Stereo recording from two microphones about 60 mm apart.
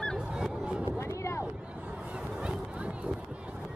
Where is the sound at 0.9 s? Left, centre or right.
Left.